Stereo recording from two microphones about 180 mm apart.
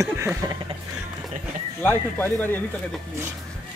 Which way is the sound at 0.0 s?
15° right (ahead or behind).